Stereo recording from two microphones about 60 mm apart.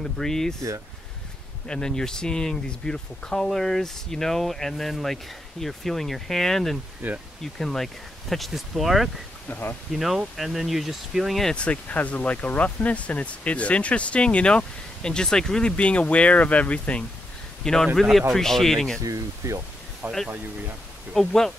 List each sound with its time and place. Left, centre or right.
0.0 s speech: centre
1.7 s speech: centre
7.0 s speech: right
7.5 s speech: centre
9.5 s speech: left
9.9 s speech: centre
11.4 s speech: centre
17.6 s speech: centre
19.0 s speech: right
20.0 s speech: right
21.1 s speech: centre